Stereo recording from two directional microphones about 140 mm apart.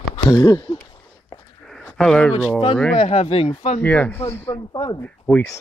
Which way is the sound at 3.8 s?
10° left (ahead or behind).